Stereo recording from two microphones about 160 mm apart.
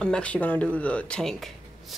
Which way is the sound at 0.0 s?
5° left (ahead or behind).